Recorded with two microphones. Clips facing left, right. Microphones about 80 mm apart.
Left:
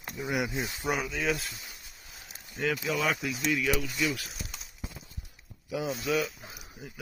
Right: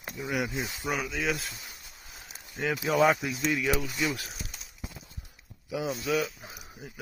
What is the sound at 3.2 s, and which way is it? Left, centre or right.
Speech, right.